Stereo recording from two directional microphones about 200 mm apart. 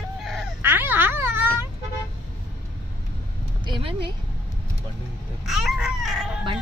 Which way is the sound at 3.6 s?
25° right (ahead or behind).